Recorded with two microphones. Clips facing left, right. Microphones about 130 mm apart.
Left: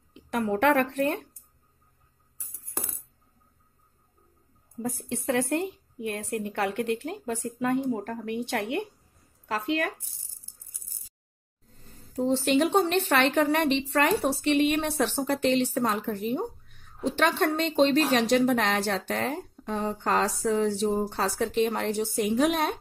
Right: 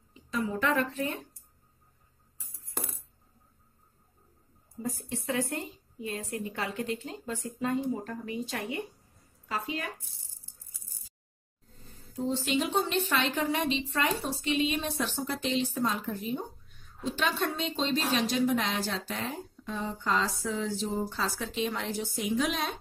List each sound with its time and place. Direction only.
0.1 s a woman's voice: 70° left (ahead or behind)
4.8 s a woman's voice: 65° left (ahead or behind)
11.8 s a woman's voice: 65° left (ahead or behind)
15.2 s a woman's voice: 60° left (ahead or behind)